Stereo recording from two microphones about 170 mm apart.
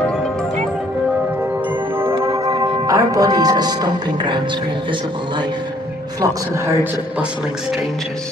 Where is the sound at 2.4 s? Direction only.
20° right (ahead or behind).